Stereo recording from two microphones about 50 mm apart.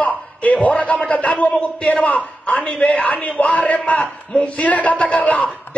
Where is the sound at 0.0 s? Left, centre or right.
Left.